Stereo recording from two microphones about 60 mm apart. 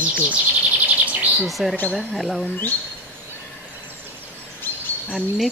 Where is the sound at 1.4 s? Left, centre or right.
Centre.